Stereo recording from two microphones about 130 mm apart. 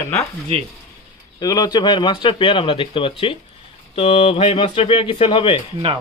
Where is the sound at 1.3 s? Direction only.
30° left (ahead or behind).